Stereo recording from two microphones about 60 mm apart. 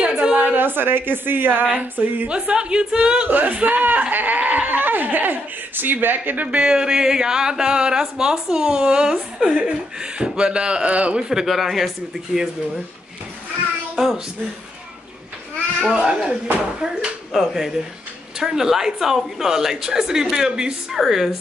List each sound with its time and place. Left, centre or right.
0.0 s a sound: centre
0.6 s a woman's voice: right; by 3.3 s centre
3.3 s a man's voice: right; by 11.9 s centre
15.9 s speech: centre